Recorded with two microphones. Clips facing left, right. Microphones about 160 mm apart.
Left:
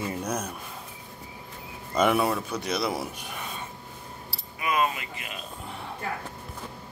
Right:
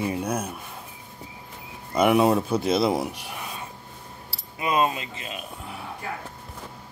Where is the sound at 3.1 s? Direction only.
10° right (ahead or behind).